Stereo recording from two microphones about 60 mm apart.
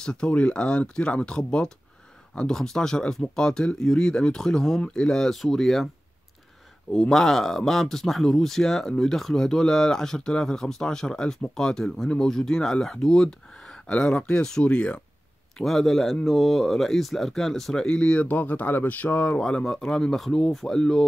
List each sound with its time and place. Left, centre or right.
0.0 s speech: centre
6.9 s speech: centre
15.5 s speech: centre
17.8 s speech: centre
18.3 s speech: left
19.4 s speech: centre